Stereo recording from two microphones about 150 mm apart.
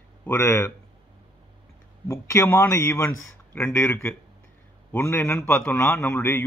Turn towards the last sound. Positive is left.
turn(degrees=15)  # may be behind; listen again after turning